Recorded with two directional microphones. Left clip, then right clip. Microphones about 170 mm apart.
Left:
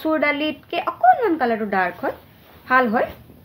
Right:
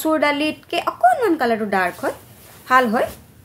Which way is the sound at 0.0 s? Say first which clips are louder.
Right 2 dB; 25° right (ahead or behind).